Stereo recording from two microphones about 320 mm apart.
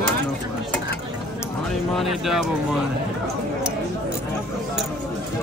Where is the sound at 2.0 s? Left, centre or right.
Centre.